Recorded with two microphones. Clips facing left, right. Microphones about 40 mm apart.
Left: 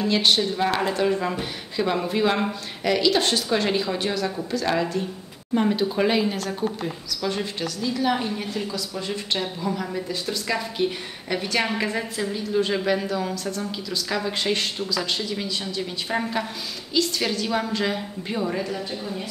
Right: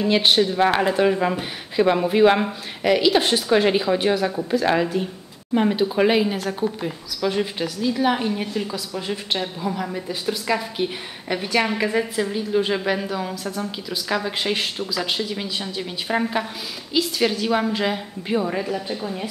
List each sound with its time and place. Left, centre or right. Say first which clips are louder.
0.0 s a woman's voice: right 3 dB; right